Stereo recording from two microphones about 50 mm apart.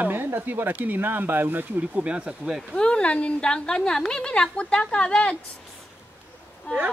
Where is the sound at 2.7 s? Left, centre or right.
Centre.